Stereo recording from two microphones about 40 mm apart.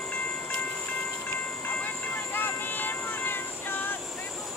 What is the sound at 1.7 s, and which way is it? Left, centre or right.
Vehicle, left.